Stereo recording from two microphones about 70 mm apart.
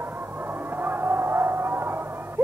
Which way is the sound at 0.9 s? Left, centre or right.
Right.